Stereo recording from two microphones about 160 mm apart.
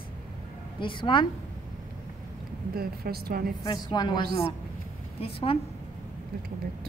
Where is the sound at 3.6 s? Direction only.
25° left (ahead or behind).